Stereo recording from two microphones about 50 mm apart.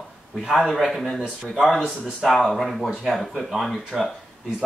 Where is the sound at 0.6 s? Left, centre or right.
Centre.